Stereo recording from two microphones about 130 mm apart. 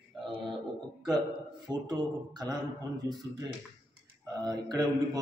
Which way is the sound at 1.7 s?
30° right (ahead or behind).